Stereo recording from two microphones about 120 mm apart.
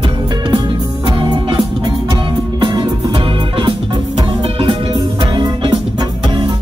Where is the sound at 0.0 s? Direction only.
45° right (ahead or behind).